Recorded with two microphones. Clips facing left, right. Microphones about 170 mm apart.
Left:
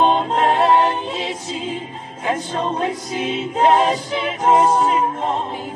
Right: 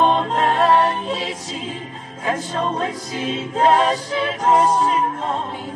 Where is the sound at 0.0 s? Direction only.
25° left (ahead or behind).